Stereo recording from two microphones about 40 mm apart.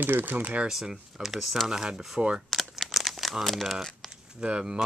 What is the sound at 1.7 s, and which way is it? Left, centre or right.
Speech, centre.